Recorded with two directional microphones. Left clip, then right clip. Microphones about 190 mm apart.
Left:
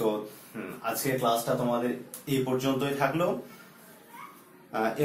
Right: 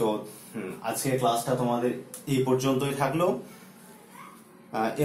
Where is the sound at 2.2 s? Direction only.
20° right (ahead or behind).